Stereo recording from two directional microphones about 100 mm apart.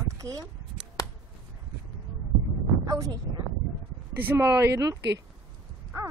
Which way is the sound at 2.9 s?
35° right (ahead or behind).